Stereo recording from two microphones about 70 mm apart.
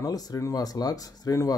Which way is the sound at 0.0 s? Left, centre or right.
Left.